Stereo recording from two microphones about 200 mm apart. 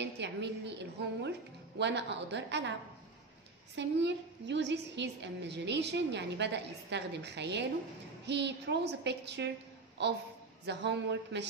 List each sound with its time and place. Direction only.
0.0 s a woman's voice: 60° right (ahead or behind)
3.7 s a woman's voice: 60° right (ahead or behind)